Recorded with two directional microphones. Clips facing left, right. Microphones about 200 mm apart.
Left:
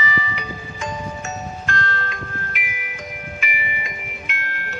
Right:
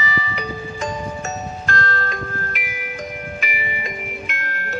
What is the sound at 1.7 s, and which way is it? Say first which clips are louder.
Music: right 3 dB; 40° right (ahead or behind).